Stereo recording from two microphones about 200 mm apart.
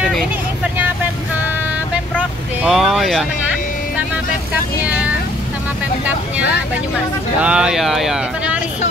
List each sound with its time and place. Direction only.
2.6 s speech: centre (ahead or behind)
4.8 s speech: 5° right (ahead or behind)
7.4 s speech: 5° right (ahead or behind)